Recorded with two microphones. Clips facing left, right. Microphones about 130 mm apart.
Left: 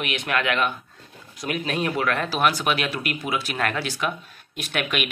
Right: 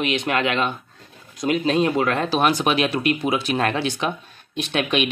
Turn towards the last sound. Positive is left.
turn(degrees=-25)  # may be behind; listen again after turning